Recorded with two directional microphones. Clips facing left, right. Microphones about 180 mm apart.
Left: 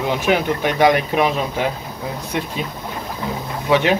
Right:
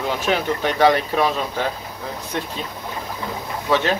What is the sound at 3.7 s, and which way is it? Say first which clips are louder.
Speech: left 3 dB; 15° left (ahead or behind).